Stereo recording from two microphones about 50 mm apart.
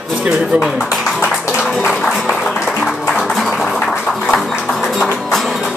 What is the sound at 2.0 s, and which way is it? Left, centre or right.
Music, centre.